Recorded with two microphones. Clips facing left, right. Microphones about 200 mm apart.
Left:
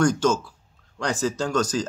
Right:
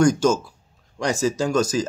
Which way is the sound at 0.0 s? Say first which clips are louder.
Right 3 dB; 10° right (ahead or behind).